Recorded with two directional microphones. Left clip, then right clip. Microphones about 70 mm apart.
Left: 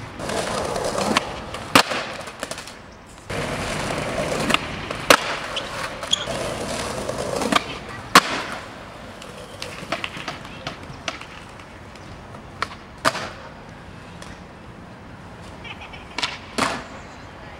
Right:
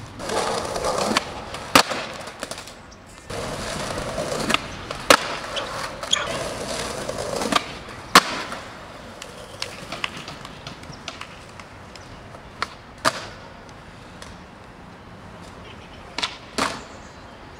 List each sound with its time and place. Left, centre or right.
0.2 s skateboard: centre
2.2 s a sound: centre
3.3 s skateboard: centre
8.1 s a sound: centre
9.9 s bird: left
10.2 s run: left
12.6 s a sound: centre
13.0 s arrow: centre
16.2 s skateboard: centre